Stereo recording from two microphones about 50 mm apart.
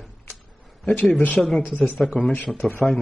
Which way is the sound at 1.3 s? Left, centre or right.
Centre.